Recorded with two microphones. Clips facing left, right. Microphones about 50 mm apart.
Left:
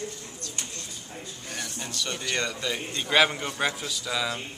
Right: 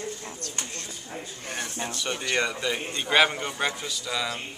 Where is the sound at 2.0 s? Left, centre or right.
Centre.